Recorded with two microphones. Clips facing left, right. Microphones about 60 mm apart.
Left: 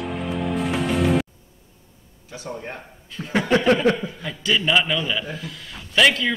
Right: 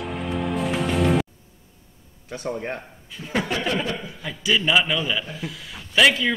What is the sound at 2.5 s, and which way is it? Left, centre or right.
Speech, right.